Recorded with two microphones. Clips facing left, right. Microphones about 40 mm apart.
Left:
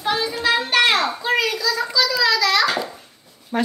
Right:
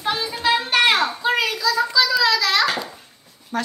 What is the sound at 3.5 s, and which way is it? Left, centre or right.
Speech, centre.